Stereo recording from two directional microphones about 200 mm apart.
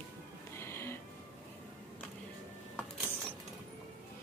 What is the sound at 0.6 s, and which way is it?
Music, 10° left (ahead or behind).